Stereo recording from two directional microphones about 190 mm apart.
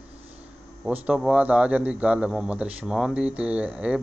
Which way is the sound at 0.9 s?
5° right (ahead or behind).